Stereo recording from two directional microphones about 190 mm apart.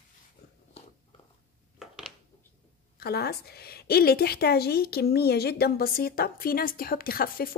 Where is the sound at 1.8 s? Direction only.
Centre (ahead or behind).